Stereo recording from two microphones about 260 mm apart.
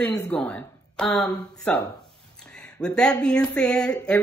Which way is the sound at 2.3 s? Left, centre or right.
Centre.